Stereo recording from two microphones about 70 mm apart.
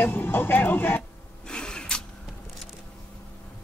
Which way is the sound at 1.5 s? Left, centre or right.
Centre.